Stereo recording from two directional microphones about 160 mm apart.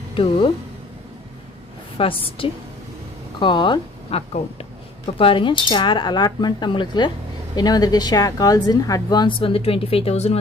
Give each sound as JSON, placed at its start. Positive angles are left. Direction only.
{"t": 0.1, "sound": "speech", "side_deg": 35}
{"t": 2.0, "sound": "a woman's voice", "side_deg": 35}